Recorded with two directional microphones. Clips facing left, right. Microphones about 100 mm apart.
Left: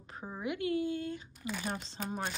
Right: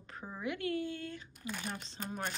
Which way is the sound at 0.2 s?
15° left (ahead or behind).